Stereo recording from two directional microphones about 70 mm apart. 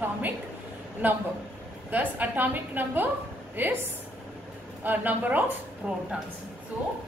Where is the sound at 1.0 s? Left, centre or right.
Right.